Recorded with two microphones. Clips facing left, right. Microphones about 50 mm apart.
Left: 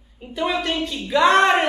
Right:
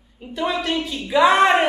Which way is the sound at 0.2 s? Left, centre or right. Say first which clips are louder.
Even; centre.